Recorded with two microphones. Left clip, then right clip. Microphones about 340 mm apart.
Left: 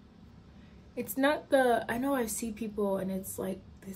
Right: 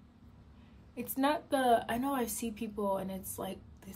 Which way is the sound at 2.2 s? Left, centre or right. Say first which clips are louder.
Left 1 dB; right.